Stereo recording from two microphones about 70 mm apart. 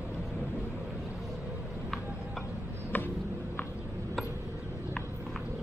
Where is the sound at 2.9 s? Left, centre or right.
Left.